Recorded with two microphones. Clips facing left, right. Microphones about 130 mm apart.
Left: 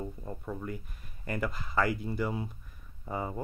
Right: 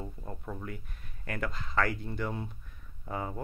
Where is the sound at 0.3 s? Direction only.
Centre (ahead or behind).